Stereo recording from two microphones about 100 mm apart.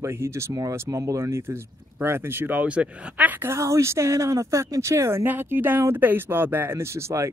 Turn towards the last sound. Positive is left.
turn(degrees=-30)  # may be behind; listen again after turning